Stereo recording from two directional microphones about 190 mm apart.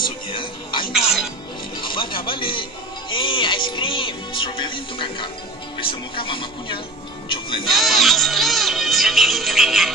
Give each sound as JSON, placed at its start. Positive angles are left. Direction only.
{"t": 0.0, "sound": "music", "side_deg": 25}
{"t": 1.8, "sound": "a sound", "side_deg": 25}
{"t": 2.2, "sound": "speech", "side_deg": 25}
{"t": 7.6, "sound": "music", "side_deg": 0}